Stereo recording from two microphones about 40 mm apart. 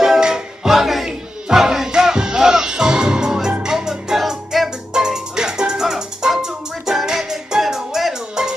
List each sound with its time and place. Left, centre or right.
0.0 s music: centre